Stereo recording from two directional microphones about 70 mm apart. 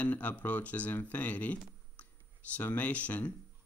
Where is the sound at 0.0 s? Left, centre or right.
Left.